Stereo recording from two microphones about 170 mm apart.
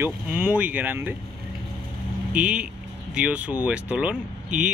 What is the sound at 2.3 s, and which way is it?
A woman's voice, 5° right (ahead or behind).